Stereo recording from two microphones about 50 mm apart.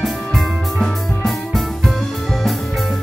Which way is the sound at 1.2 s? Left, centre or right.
Centre.